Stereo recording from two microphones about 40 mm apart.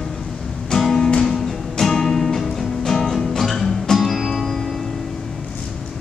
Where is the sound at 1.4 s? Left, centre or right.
Centre.